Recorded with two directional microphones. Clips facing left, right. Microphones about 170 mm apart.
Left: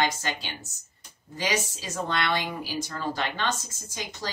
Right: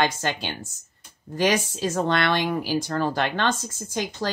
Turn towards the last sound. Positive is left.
turn(degrees=-55)  # may be behind; listen again after turning